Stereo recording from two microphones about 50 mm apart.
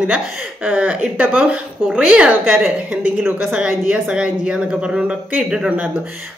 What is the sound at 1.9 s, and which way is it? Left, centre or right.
Speech, centre.